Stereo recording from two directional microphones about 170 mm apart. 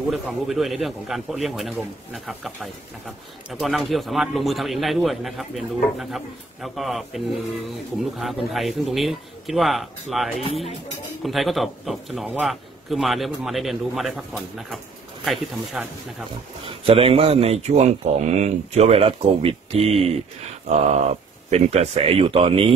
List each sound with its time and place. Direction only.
0.1 s speech: centre (ahead or behind)
10.4 s speech: 35° left (ahead or behind)
11.2 s speech: centre (ahead or behind)
16.6 s speech: 35° right (ahead or behind)